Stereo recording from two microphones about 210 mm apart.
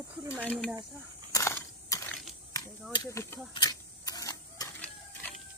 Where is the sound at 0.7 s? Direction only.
20° right (ahead or behind).